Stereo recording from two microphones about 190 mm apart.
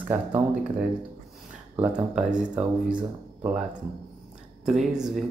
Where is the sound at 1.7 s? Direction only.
5° right (ahead or behind).